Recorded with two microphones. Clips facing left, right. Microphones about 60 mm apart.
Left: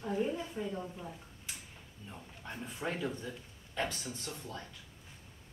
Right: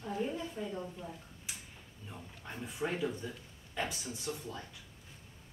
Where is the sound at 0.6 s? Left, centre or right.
Centre.